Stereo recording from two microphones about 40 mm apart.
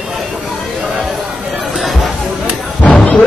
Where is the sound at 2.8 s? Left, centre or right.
Left.